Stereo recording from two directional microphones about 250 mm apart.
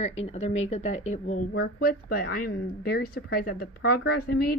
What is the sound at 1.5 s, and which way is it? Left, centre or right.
A woman's voice, left.